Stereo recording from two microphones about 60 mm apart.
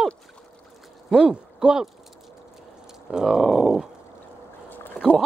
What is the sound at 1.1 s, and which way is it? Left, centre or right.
Speech, centre.